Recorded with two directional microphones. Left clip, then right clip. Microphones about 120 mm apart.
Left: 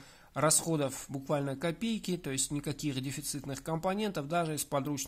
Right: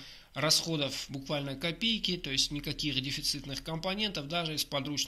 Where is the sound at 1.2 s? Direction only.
45° left (ahead or behind).